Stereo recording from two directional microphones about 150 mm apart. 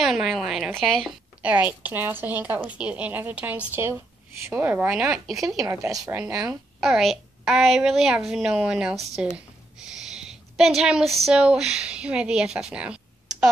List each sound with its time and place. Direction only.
0.0 s a woman's voice: centre (ahead or behind)
5.7 s speech: 20° right (ahead or behind)
6.5 s a woman's voice: centre (ahead or behind)